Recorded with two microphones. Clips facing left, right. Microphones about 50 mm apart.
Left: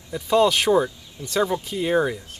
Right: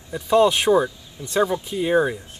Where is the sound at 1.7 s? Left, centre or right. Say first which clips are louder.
Right 2 dB; centre.